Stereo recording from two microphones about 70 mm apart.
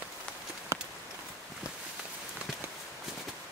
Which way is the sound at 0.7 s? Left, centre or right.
Right.